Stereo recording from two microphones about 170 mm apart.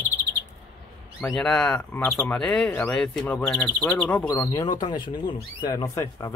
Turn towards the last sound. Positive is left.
turn(degrees=20)  # may be behind; listen again after turning